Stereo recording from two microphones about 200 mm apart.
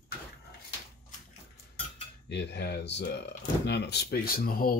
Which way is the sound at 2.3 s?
60° left (ahead or behind).